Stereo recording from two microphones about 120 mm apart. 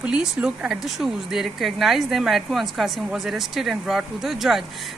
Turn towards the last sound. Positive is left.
turn(degrees=0)  # may be behind; listen again after turning